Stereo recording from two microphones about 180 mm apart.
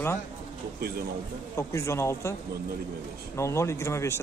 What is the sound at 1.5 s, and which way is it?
Speech, 15° left (ahead or behind).